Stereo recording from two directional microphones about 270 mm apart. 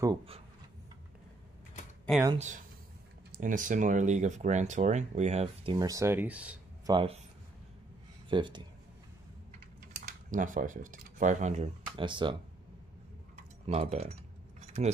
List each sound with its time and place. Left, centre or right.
0.0 s speech: centre
2.3 s speech: right; by 6.6 s centre
6.9 s speech: centre
8.3 s speech: centre
10.0 s speech: right
13.4 s keys jangling: right